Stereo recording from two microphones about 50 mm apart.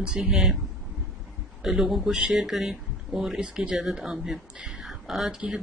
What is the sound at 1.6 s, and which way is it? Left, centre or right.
Speech, centre.